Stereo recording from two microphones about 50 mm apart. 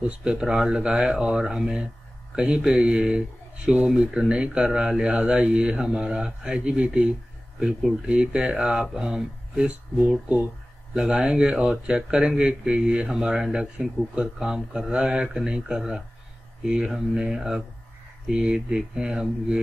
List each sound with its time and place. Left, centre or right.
0.0 s a man's voice: right
8.1 s a man's voice: right
9.7 s speech: right
11.0 s speech: centre